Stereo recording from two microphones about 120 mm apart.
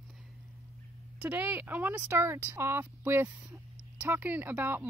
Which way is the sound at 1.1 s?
10° right (ahead or behind).